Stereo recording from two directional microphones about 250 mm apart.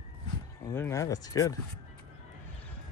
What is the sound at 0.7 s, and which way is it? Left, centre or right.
Speech, centre.